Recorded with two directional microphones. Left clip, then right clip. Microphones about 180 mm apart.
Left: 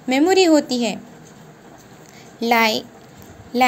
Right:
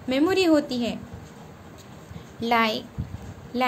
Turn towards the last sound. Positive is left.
turn(degrees=20)  # may be behind; listen again after turning